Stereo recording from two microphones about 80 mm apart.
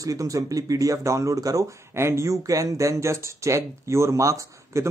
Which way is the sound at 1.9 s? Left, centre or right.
Right.